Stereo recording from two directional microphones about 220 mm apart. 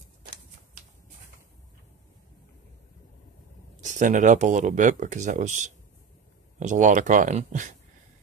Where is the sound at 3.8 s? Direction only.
35° right (ahead or behind).